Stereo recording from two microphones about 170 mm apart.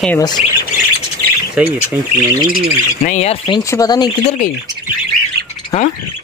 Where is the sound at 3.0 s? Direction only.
45° left (ahead or behind).